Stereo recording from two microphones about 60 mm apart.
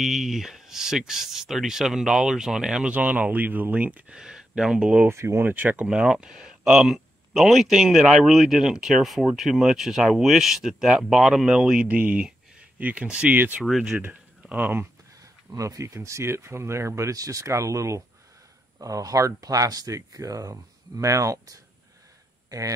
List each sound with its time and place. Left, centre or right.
0.0 s speech: centre
2.9 s speech: right
4.2 s speech: centre
5.0 s speech: right
5.4 s speech: right
5.9 s speech: centre
13.7 s speech: centre
15.5 s speech: right
18.8 s speech: right